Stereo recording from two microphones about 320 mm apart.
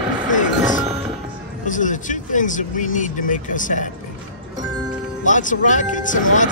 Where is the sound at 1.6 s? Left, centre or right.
Left.